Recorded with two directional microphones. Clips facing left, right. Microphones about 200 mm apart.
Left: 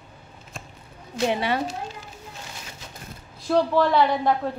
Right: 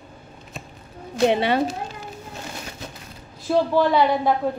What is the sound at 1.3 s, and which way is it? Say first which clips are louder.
Speech: right 4 dB; 25° right (ahead or behind).